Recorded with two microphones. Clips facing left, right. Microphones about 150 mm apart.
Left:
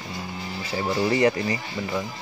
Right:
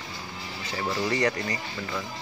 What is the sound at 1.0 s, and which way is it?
Speech, 25° left (ahead or behind).